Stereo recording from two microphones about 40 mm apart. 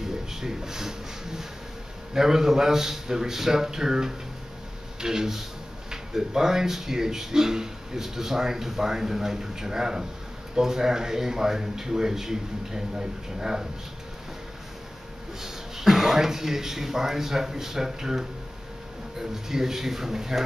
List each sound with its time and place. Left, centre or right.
0.0 s a sound: centre
2.1 s speech: centre
15.4 s speech: centre